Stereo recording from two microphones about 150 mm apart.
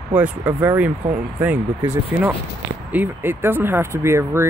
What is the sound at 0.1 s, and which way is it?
Speech, 10° right (ahead or behind).